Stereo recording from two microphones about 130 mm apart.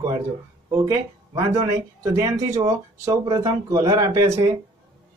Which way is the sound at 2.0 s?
25° right (ahead or behind).